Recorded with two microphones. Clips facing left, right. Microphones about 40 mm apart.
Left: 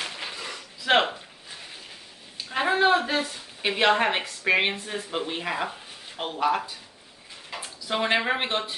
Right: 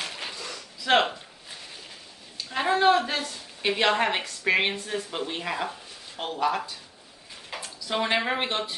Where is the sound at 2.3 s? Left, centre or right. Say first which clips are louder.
Left 1 dB; centre.